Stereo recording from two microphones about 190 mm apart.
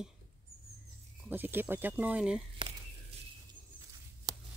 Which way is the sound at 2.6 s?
25° right (ahead or behind).